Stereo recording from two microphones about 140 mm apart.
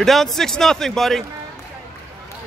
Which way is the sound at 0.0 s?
Centre (ahead or behind).